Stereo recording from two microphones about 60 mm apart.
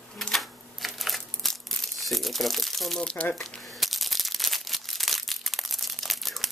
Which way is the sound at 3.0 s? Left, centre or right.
Centre.